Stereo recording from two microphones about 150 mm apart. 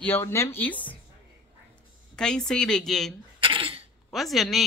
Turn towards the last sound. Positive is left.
turn(degrees=0)  # may be behind; listen again after turning